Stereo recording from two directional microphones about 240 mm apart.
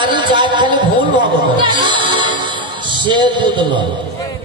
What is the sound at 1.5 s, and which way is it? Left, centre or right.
Music, centre.